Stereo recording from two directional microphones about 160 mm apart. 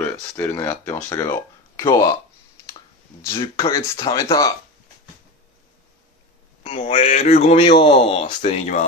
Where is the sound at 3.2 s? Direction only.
30° left (ahead or behind).